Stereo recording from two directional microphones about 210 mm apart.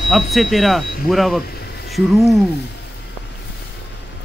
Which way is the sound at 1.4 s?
50° left (ahead or behind).